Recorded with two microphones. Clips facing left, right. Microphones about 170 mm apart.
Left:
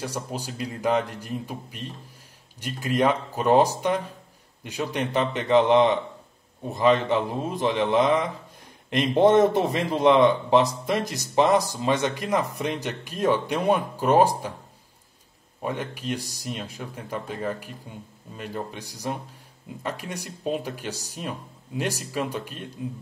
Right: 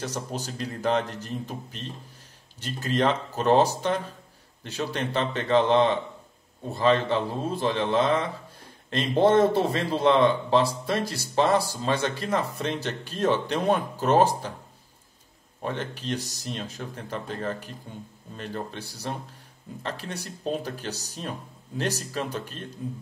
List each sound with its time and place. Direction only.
0.0 s a man's voice: 10° left (ahead or behind)
15.6 s a man's voice: 10° left (ahead or behind)